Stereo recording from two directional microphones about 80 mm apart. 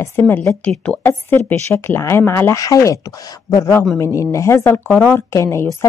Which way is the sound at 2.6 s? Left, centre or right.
Left.